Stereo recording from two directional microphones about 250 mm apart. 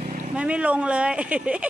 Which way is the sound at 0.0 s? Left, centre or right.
Right.